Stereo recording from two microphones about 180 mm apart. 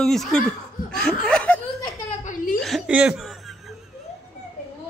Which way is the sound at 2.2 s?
50° left (ahead or behind).